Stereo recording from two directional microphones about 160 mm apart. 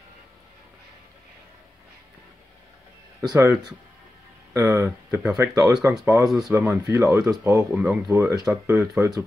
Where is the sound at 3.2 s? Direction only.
20° right (ahead or behind).